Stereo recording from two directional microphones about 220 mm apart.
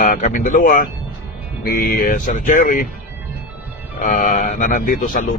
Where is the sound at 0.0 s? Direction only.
35° left (ahead or behind).